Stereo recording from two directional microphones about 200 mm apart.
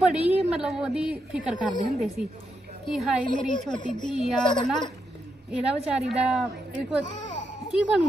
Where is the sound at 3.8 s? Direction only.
40° left (ahead or behind).